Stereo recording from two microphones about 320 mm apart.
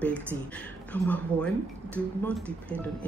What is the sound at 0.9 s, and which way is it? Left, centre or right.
Speech, centre.